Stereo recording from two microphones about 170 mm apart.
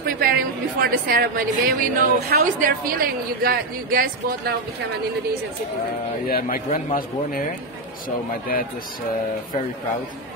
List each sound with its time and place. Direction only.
0.0 s a woman's voice: 60° right (ahead or behind)
6.2 s a man's voice: 60° left (ahead or behind)